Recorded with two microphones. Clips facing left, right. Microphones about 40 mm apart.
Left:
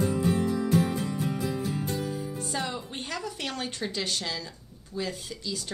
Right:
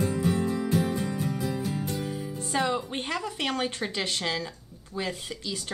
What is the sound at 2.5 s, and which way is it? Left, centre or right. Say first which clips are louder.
A woman's voice: right 9 dB; right.